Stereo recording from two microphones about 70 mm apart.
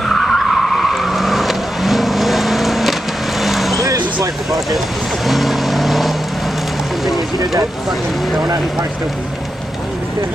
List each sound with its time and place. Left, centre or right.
0.0 s vehicle: centre
3.7 s a sound: right
5.2 s vehicle: centre